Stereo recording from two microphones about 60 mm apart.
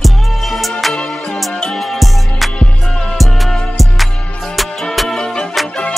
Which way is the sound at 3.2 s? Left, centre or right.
Centre.